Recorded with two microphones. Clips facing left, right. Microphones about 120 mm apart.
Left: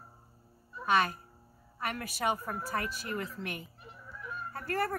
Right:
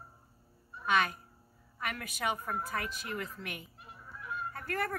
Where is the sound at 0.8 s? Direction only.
40° left (ahead or behind).